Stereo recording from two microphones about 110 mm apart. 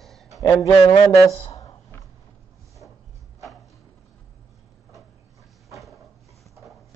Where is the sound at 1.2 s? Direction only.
30° left (ahead or behind).